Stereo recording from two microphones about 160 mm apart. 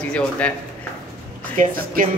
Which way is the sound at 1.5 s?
60° right (ahead or behind).